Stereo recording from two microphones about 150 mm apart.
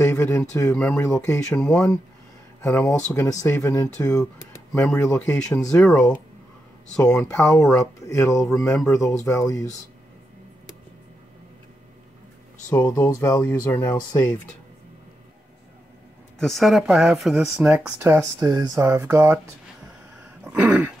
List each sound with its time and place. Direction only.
0.0 s speech: 15° left (ahead or behind)
1.7 s speech: 5° left (ahead or behind)
3.1 s speech: 20° left (ahead or behind)
7.0 s speech: 10° left (ahead or behind)
8.1 s speech: 20° left (ahead or behind)
12.6 s speech: 20° left (ahead or behind)
16.3 s speech: centre (ahead or behind); by 19.4 s 15° right (ahead or behind)
20.4 s throat clearing: 10° right (ahead or behind)